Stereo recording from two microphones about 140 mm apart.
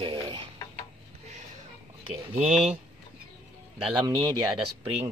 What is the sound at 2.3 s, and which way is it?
Speech, 60° right (ahead or behind).